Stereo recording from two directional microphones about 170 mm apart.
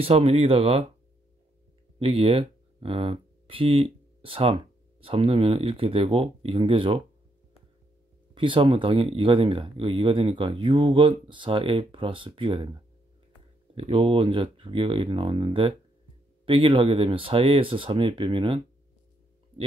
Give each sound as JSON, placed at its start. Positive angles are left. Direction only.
{"t": 0.0, "sound": "speech", "side_deg": -35}
{"t": 2.0, "sound": "speech", "side_deg": -35}
{"t": 8.4, "sound": "speech", "side_deg": -30}
{"t": 13.7, "sound": "speech", "side_deg": -35}